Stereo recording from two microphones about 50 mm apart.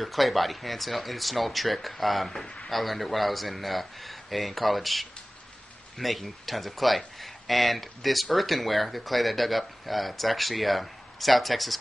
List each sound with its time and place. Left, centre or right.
0.0 s speech: centre
2.4 s speech: centre
2.7 s speech: centre